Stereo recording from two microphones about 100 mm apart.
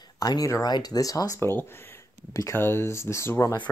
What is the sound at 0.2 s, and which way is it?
Speech, 35° left (ahead or behind).